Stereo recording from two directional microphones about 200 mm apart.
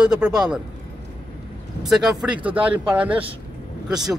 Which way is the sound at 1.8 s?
Centre (ahead or behind).